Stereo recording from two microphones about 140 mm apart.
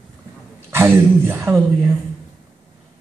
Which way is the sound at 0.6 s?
15° right (ahead or behind).